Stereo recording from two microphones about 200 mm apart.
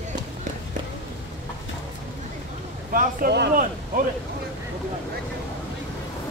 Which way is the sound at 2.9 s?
45° right (ahead or behind).